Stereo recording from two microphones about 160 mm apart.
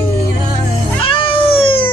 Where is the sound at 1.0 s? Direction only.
35° left (ahead or behind).